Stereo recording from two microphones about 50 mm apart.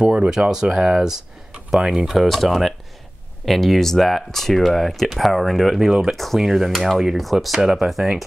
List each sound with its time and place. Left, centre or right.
0.0 s speech: right
2.2 s speech: centre